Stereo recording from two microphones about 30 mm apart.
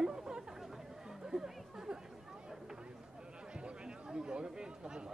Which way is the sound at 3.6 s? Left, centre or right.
Right.